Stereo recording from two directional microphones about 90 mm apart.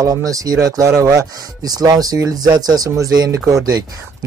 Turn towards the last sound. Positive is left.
turn(degrees=-45)  # may be behind; listen again after turning